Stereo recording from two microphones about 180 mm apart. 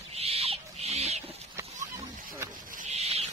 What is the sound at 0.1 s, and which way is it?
Owl, 35° right (ahead or behind).